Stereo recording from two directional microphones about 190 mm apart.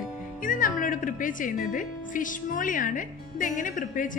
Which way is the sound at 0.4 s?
45° left (ahead or behind).